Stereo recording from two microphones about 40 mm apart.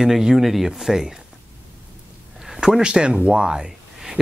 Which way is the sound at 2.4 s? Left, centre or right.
Centre.